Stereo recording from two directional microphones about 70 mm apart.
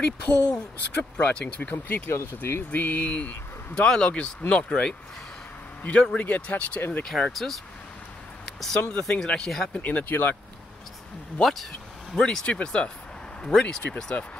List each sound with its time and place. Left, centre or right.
0.0 s speech: centre; by 2.6 s left
2.7 s speech: left
7.2 s speech: centre
8.5 s speech: centre
9.8 s speech: left
11.4 s speech: centre